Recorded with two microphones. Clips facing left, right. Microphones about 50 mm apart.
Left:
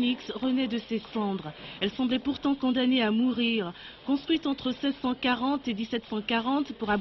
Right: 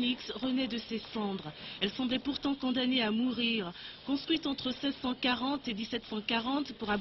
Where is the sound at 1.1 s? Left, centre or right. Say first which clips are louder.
Left 5 dB; centre.